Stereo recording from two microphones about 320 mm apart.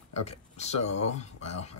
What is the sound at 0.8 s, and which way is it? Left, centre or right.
Speech, left.